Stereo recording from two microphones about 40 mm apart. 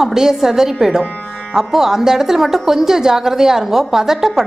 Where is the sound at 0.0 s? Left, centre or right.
Centre.